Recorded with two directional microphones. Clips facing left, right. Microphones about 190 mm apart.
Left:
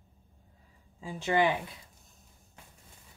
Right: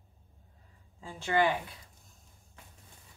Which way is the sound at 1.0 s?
20° left (ahead or behind).